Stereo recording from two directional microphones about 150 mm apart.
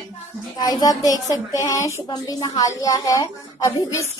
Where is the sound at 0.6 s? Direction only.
25° left (ahead or behind).